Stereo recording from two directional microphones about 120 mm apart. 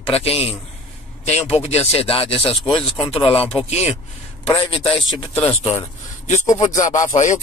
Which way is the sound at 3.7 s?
65° left (ahead or behind).